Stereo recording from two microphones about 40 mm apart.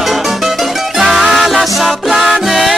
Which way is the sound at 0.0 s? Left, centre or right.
Centre.